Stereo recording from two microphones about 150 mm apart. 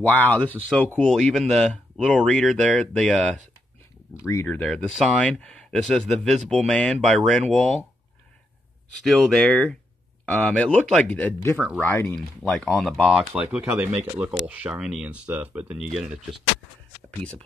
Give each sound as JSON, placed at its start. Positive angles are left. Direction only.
{"t": 0.0, "sound": "speech", "side_deg": 10}
{"t": 4.5, "sound": "speech", "side_deg": 5}
{"t": 9.0, "sound": "speech", "side_deg": 5}
{"t": 12.4, "sound": "speech", "side_deg": 0}